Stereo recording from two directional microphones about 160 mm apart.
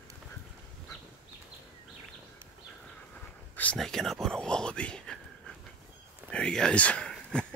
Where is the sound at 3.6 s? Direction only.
5° left (ahead or behind).